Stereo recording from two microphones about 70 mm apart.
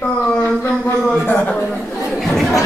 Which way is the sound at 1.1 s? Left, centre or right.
Left.